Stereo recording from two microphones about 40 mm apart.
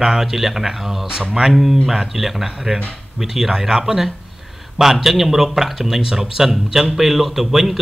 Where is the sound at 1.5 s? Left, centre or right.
Centre.